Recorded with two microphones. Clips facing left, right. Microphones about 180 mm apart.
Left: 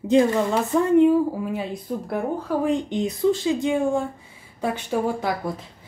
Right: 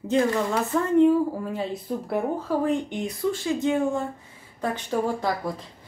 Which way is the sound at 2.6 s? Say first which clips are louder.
Left 3 dB; 20° left (ahead or behind).